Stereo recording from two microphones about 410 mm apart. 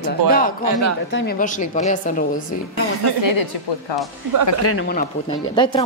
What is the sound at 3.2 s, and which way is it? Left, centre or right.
Speech, left.